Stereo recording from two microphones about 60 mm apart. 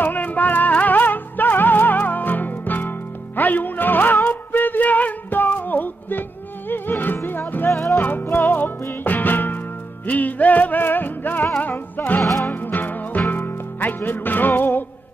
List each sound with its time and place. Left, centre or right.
0.0 s music: left
7.7 s music: left
8.0 s music: left